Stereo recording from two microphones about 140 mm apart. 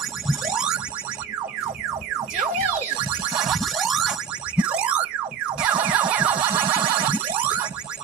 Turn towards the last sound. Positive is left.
turn(degrees=-10)  # may be behind; listen again after turning